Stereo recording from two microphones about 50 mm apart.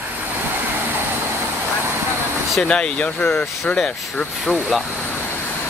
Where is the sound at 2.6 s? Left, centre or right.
Centre.